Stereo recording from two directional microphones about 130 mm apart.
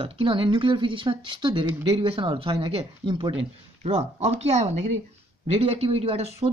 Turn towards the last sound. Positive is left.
turn(degrees=-50)  # may be behind; listen again after turning